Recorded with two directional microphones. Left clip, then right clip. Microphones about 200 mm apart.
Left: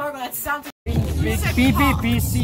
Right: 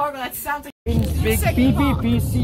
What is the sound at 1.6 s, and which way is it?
Speech, 15° left (ahead or behind).